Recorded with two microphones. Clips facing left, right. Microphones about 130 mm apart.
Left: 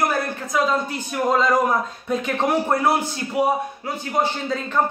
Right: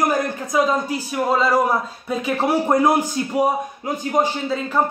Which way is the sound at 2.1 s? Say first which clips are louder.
Right 1 dB; 5° right (ahead or behind).